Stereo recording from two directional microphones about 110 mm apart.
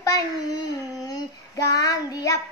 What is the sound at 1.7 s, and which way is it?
Speech, 35° left (ahead or behind).